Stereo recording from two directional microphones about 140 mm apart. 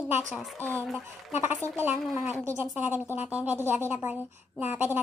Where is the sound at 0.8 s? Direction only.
Centre (ahead or behind).